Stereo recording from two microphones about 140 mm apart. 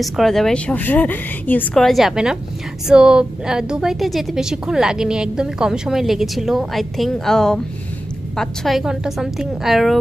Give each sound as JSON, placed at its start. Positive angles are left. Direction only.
{"t": 0.0, "sound": "a woman's voice", "side_deg": 0}